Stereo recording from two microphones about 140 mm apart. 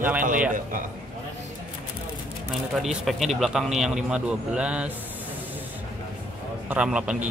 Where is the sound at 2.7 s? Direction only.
Centre (ahead or behind).